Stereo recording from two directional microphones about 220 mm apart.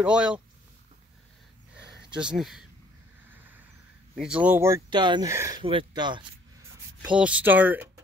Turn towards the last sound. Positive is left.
turn(degrees=-10)  # may be behind; listen again after turning